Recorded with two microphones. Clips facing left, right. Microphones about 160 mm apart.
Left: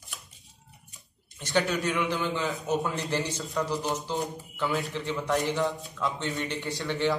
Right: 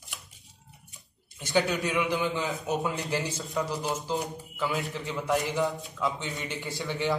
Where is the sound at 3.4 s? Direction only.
Centre (ahead or behind).